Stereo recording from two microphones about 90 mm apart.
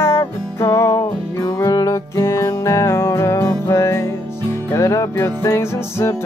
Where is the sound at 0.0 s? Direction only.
30° left (ahead or behind).